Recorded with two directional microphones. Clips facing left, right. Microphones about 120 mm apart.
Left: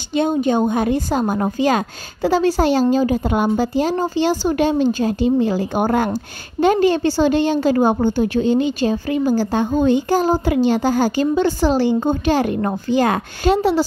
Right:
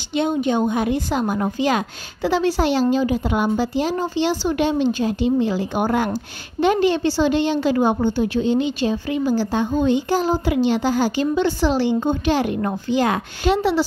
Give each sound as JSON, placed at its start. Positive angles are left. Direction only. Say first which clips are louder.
{"t": 0.1, "sound": "a woman's voice", "louder": "left 3 dB", "side_deg": 40}